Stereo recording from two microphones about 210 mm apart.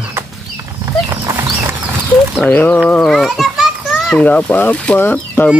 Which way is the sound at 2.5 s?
10° left (ahead or behind).